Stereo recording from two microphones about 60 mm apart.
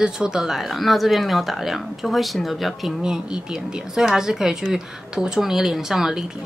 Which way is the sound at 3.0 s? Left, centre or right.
Centre.